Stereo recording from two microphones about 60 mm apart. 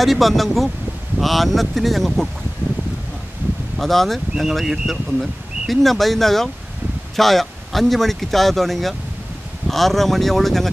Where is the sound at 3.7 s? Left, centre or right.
Centre.